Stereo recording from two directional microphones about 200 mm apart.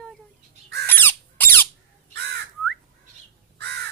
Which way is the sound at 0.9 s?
10° left (ahead or behind).